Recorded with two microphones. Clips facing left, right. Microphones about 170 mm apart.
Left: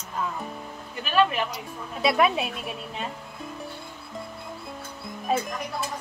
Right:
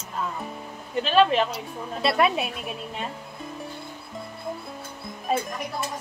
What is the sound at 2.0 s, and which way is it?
A woman's voice, centre (ahead or behind).